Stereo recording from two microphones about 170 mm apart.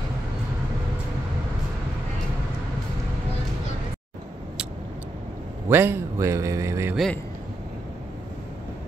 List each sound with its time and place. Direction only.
5.7 s a man's voice: 15° right (ahead or behind)